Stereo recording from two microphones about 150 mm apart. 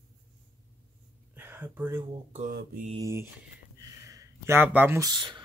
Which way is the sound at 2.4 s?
70° right (ahead or behind).